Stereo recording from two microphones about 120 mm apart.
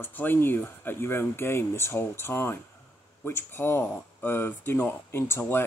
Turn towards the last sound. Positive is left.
turn(degrees=20)  # may be behind; listen again after turning